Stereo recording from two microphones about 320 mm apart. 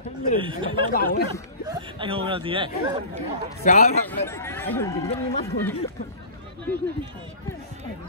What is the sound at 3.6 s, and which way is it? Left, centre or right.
Speech, left.